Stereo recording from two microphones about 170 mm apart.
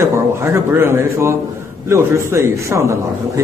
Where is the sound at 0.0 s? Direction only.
15° right (ahead or behind).